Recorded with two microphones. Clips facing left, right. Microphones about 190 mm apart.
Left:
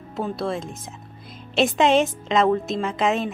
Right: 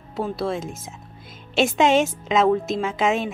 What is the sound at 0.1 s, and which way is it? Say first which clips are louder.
A woman's voice: right 1 dB; centre (ahead or behind).